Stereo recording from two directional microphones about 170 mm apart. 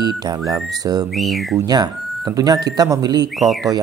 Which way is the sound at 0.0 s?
25° right (ahead or behind).